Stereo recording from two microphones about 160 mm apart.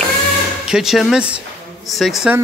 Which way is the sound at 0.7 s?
Centre (ahead or behind).